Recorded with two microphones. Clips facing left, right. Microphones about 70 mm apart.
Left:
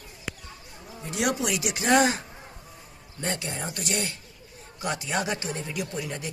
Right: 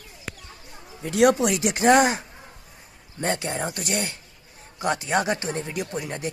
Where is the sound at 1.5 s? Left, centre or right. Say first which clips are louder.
Right 5 dB; right.